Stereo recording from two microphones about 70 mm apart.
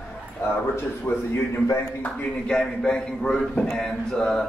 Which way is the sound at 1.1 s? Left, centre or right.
Left.